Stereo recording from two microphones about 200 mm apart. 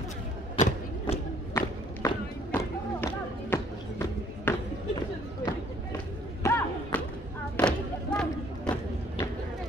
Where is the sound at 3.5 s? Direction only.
10° left (ahead or behind).